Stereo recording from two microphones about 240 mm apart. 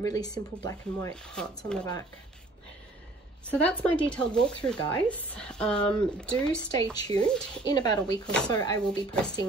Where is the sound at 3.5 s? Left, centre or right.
Centre.